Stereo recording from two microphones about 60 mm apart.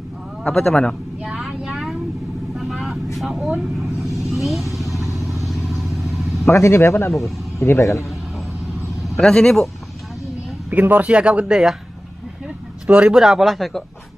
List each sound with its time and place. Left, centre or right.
0.4 s a man's voice: centre
1.2 s vehicle: centre
3.2 s speech: centre
3.7 s vehicle: centre
6.4 s a man's voice: left
9.2 s a man's voice: centre
10.7 s speech: right; by 11.7 s centre
13.1 s speech: centre